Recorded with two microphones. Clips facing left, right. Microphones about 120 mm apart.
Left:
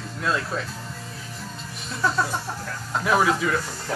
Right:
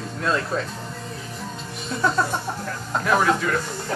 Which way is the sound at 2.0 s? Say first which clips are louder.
Right 2 dB; centre (ahead or behind).